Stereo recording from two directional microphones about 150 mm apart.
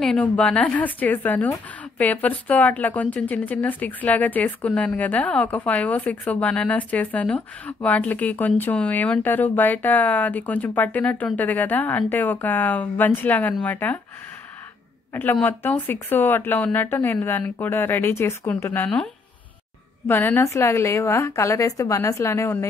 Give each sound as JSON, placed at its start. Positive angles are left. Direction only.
{"t": 0.0, "sound": "speech", "side_deg": 5}
{"t": 15.3, "sound": "speech", "side_deg": 10}
{"t": 20.1, "sound": "speech", "side_deg": 15}